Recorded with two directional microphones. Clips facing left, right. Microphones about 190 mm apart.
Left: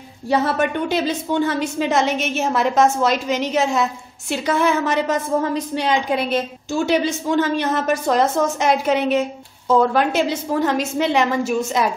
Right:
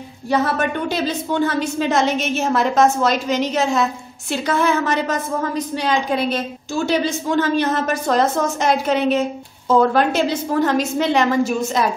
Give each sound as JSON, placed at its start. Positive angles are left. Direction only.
{"t": 0.3, "sound": "a woman's voice", "side_deg": 25}